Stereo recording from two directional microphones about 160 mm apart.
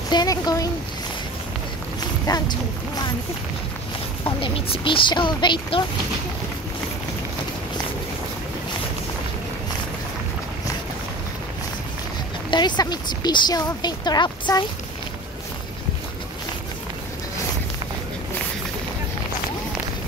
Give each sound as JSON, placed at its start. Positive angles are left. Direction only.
{"t": 0.1, "sound": "speech", "side_deg": 25}
{"t": 2.2, "sound": "speech", "side_deg": 25}
{"t": 4.2, "sound": "speech", "side_deg": 35}
{"t": 12.4, "sound": "speech", "side_deg": 30}